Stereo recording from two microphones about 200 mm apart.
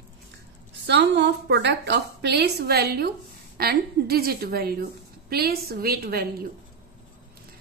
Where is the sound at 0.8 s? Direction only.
60° right (ahead or behind).